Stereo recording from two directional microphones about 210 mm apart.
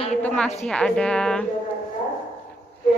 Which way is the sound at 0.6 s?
5° left (ahead or behind).